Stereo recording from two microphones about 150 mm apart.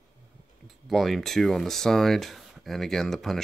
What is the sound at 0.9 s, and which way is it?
Speech, centre (ahead or behind).